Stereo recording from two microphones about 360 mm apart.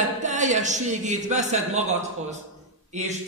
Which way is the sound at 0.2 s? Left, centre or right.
Centre.